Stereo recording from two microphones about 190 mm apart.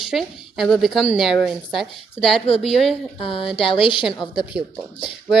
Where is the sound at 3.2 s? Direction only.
30° left (ahead or behind).